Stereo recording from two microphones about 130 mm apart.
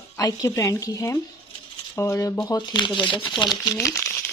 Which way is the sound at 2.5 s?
35° left (ahead or behind).